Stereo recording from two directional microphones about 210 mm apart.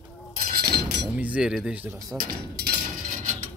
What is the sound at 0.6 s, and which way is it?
Chink, 50° right (ahead or behind).